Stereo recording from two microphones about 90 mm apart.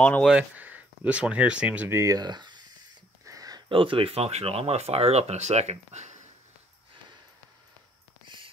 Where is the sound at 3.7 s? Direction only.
80° right.